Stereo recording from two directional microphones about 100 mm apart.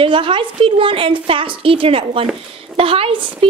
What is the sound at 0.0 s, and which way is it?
A woman's voice, 60° right (ahead or behind).